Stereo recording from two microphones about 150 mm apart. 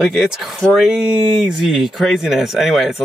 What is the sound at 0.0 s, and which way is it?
Speech, centre (ahead or behind).